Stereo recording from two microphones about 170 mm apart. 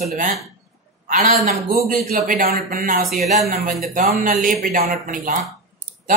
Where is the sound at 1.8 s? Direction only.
50° right (ahead or behind).